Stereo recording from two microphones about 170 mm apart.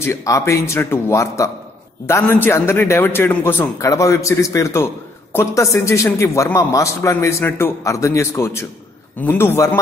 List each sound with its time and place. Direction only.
0.0 s a man's voice: 15° left (ahead or behind)